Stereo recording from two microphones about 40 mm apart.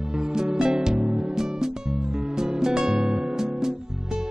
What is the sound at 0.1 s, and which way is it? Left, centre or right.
Music, centre.